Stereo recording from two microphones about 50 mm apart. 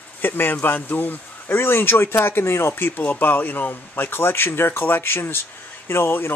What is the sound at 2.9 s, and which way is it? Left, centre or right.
Speech, left.